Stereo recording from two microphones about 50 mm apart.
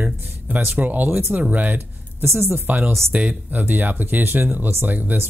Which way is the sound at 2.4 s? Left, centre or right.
Right.